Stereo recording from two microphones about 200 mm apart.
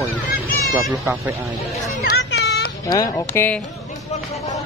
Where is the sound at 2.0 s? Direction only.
55° left (ahead or behind).